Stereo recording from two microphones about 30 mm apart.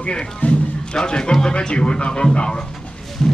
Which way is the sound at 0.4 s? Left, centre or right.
Left.